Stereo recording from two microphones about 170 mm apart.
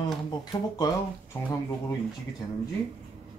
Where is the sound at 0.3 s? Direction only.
25° left (ahead or behind).